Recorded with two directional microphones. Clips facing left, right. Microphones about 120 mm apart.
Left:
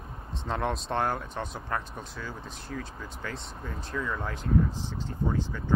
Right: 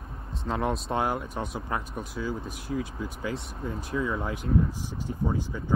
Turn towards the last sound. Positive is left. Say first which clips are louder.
# even
turn(degrees=-15)  # may be behind; listen again after turning